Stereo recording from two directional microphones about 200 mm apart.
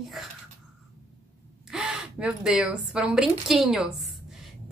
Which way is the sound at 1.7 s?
5° right (ahead or behind).